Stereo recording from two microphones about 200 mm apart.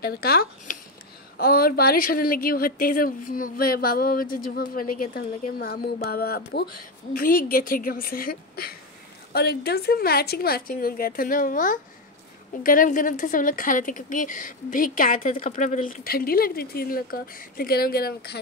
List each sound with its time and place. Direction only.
0.0 s a woman's voice: 50° left (ahead or behind)